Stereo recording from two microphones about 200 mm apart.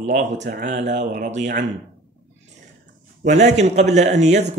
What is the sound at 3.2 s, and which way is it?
Speech, 35° right (ahead or behind).